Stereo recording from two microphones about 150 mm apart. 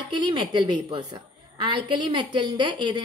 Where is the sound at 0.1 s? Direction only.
30° right (ahead or behind).